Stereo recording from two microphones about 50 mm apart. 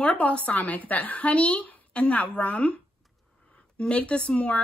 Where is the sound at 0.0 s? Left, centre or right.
Left.